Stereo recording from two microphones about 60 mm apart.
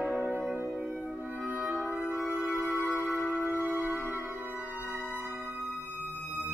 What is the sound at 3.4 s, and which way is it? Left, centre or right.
Music, right.